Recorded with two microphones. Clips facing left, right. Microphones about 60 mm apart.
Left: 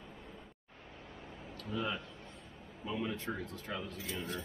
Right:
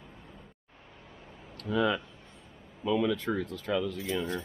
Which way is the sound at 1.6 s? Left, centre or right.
Right.